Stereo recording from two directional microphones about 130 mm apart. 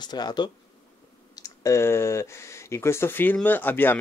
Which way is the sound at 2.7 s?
20° left (ahead or behind).